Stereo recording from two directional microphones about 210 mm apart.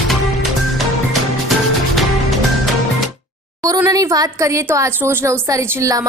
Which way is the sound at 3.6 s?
15° right (ahead or behind).